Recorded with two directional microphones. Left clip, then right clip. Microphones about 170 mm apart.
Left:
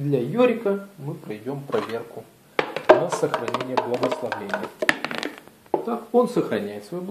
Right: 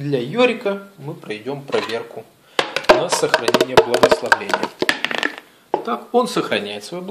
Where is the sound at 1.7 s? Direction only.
40° right (ahead or behind).